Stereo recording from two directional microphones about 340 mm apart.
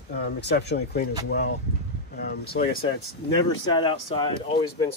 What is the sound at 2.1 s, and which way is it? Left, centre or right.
Speech, left.